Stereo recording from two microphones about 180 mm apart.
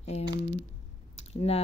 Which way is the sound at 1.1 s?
35° left (ahead or behind).